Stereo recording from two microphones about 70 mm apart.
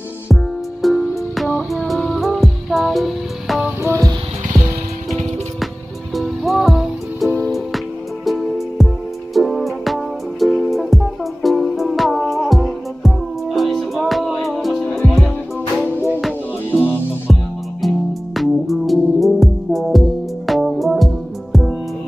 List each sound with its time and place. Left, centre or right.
0.8 s music: centre
3.8 s music: right
6.1 s music: centre
8.3 s music: centre
17.8 s music: centre